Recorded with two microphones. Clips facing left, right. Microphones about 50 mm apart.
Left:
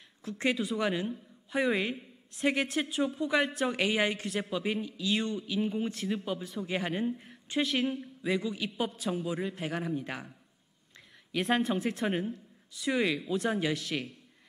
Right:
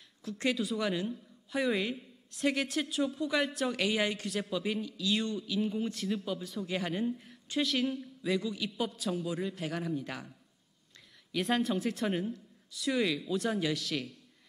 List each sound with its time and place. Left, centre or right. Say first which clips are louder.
0.4 s speech: left 2 dB; centre
2.3 s speech: left 2 dB; centre
3.7 s speech: left 2 dB; left
4.3 s speech: left 1 dB; centre
4.6 s speech: left 1 dB; left
5.1 s speech: left 1 dB; centre
11.4 s speech: left 2 dB; centre
12.1 s speech: left 1 dB; left
13.3 s speech: left 2 dB; centre